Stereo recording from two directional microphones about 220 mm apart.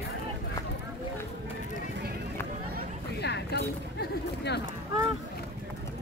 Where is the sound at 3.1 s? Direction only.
50° left (ahead or behind).